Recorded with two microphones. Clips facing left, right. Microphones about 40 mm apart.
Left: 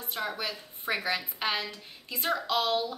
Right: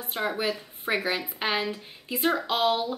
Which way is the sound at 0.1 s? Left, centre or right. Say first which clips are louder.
Right 6 dB; right.